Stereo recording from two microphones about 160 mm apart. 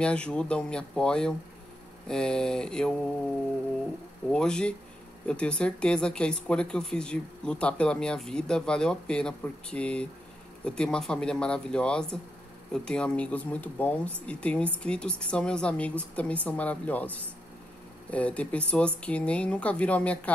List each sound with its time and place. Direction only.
0.0 s speech: 5° left (ahead or behind)
4.3 s speech: 5° left (ahead or behind)